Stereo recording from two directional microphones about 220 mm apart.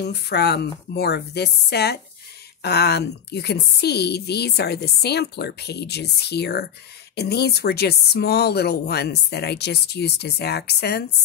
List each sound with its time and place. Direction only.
0.0 s a woman's voice: 45° left (ahead or behind)